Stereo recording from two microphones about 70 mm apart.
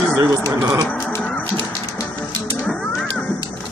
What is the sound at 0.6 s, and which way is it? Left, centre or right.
Speech, right.